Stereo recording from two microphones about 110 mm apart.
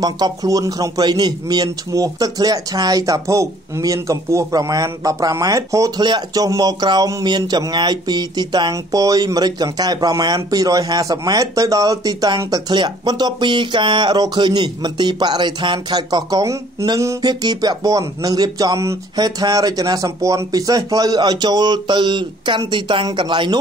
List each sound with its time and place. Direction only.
0.0 s a man's voice: 35° right (ahead or behind)